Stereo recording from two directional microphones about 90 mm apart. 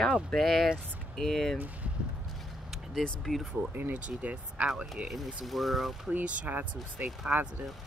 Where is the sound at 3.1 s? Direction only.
5° left (ahead or behind).